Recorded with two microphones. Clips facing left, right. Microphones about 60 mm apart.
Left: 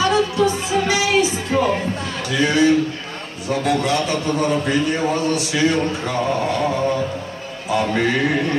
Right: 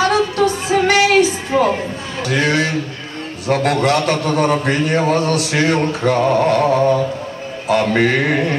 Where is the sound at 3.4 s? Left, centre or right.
Right.